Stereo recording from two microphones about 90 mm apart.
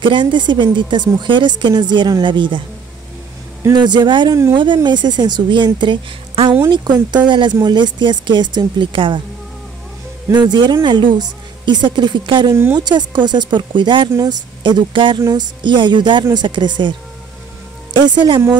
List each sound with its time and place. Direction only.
0.0 s a woman's voice: 65° right (ahead or behind)
3.7 s a woman's voice: 55° right (ahead or behind)
10.3 s a woman's voice: 55° right (ahead or behind)
15.2 s a woman's voice: 50° right (ahead or behind)
18.0 s a woman's voice: 55° right (ahead or behind)